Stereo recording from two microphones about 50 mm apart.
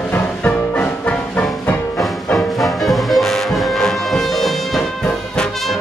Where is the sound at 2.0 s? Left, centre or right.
Centre.